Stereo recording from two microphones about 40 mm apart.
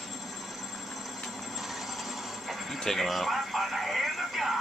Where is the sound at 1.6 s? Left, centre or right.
Centre.